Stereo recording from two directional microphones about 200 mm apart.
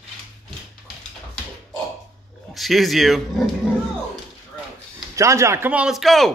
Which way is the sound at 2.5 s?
Centre (ahead or behind).